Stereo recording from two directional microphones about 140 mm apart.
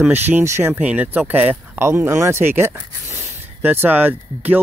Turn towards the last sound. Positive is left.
turn(degrees=-15)  # may be behind; listen again after turning